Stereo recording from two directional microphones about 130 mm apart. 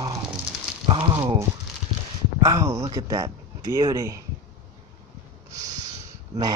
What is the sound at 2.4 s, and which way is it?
Speech, 25° right (ahead or behind).